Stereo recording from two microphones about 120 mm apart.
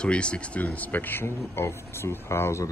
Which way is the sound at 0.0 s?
10° left (ahead or behind).